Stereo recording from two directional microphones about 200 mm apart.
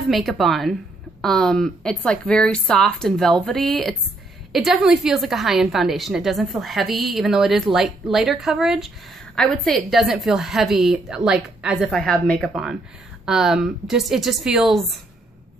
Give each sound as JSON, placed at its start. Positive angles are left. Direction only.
{"t": 0.1, "sound": "a woman's voice", "side_deg": 0}